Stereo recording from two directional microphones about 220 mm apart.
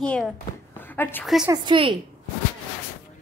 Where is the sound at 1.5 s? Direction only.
20° right (ahead or behind).